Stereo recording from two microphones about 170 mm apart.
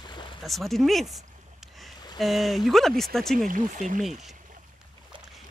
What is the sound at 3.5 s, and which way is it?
Speech, 50° right (ahead or behind).